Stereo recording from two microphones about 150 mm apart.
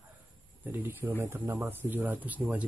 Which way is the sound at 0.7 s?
15° right (ahead or behind).